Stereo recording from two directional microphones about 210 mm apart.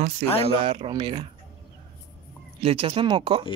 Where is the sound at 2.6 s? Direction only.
30° right (ahead or behind).